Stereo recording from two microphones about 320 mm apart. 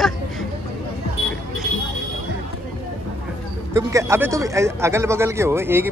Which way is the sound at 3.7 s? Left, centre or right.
Centre.